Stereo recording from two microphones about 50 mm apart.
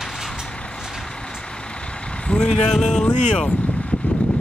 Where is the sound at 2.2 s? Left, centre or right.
Centre.